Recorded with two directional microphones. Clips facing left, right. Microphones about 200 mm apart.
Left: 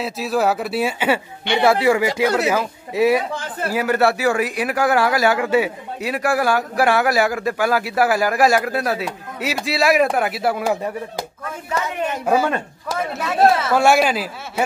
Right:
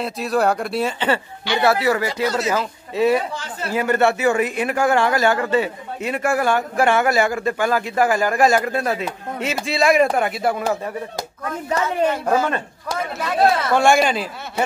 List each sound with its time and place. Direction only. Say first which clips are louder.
0.0 s a man's voice: even; centre (ahead or behind)
2.2 s speech: left 2 dB; 60° left (ahead or behind)
2.5 s a man's voice: left 1 dB; 10° left (ahead or behind)
11.7 s a man's voice: right 4 dB; 15° left (ahead or behind)